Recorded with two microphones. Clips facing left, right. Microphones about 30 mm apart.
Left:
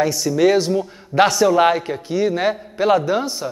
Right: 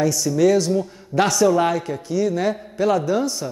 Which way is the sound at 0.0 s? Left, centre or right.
Left.